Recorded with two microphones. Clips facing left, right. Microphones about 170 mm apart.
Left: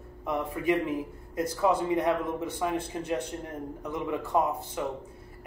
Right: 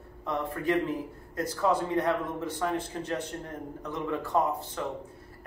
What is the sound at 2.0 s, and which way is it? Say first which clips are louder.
A man's voice: left 1 dB; 15° left (ahead or behind).